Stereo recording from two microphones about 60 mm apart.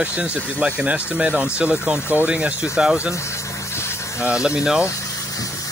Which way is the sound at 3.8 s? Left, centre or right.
Left.